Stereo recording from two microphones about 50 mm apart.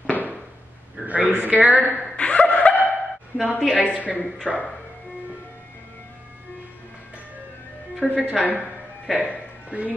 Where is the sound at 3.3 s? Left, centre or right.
Right.